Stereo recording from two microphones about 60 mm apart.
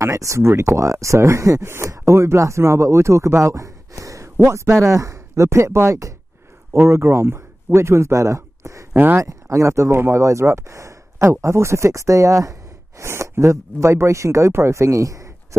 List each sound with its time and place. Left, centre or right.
0.0 s speech: right
4.4 s speech: right
4.8 s speech: right
6.9 s speech: right
8.9 s speech: right
9.2 s speech: right